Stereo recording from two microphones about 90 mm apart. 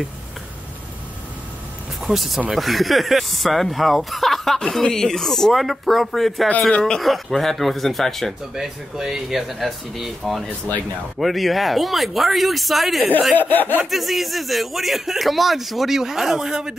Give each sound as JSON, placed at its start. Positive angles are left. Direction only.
{"t": 2.0, "sound": "speech", "side_deg": 0}
{"t": 13.4, "sound": "a sound", "side_deg": 20}
{"t": 13.8, "sound": "speech", "side_deg": 0}